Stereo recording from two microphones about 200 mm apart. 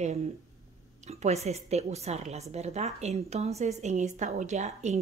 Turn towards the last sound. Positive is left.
turn(degrees=-35)  # may be behind; listen again after turning